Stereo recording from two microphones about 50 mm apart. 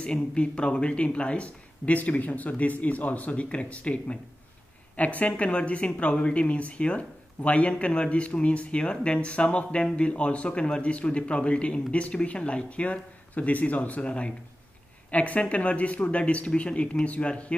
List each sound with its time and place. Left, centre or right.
0.0 s speech: left